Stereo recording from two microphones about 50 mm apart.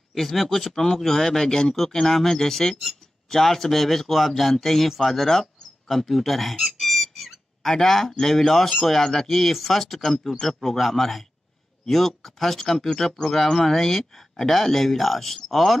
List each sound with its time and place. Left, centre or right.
0.1 s speech: centre